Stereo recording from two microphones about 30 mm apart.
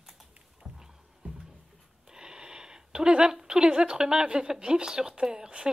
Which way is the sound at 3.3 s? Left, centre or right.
Right.